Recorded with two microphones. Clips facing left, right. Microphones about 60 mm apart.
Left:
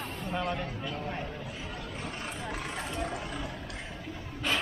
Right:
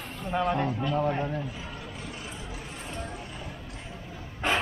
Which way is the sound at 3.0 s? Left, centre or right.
Left.